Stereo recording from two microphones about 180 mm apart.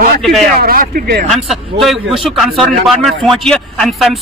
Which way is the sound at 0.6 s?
55° right (ahead or behind).